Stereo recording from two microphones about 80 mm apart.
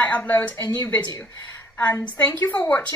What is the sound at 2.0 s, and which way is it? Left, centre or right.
Speech, left.